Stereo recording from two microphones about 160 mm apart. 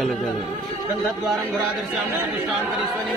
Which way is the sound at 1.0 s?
Centre (ahead or behind).